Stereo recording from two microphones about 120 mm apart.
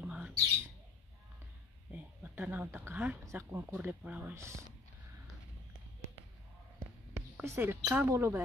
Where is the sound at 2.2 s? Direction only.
15° right (ahead or behind).